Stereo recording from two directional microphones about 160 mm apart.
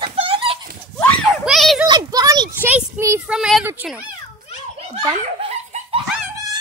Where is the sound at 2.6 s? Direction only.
10° right (ahead or behind).